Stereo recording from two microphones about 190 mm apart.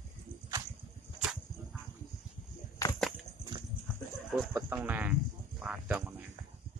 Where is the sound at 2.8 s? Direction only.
15° left (ahead or behind).